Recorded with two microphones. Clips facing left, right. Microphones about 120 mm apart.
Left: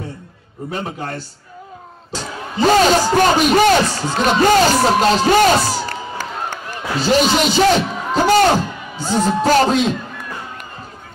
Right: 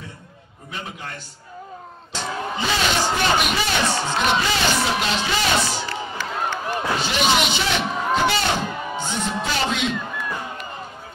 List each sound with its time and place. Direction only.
0.7 s a man's voice: 40° left (ahead or behind)